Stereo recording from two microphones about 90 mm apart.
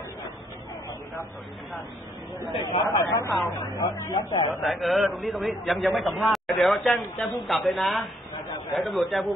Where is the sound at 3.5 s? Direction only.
55° left (ahead or behind).